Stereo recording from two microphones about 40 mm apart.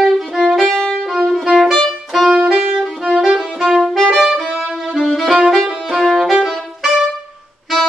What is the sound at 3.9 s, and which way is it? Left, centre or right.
Saxophone, centre.